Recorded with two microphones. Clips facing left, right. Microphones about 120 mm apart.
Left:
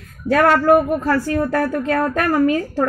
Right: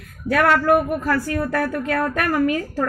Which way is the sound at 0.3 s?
30° left (ahead or behind).